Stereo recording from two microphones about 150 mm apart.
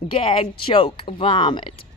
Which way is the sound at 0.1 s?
35° left (ahead or behind).